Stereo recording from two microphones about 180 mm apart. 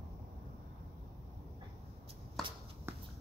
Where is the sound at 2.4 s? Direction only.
Centre (ahead or behind).